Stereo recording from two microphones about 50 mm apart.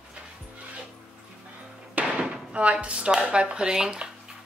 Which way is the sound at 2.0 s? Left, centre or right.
Right.